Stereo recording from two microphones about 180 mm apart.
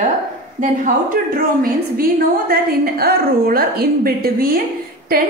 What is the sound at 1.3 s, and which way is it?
A woman's voice, 55° right (ahead or behind).